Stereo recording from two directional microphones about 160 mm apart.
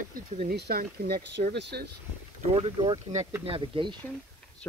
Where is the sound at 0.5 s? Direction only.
70° right (ahead or behind); by 1.9 s 90° right.